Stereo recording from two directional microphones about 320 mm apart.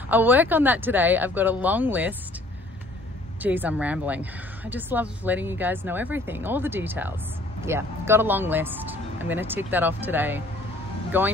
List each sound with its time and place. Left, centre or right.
0.1 s speech: centre
3.4 s speech: centre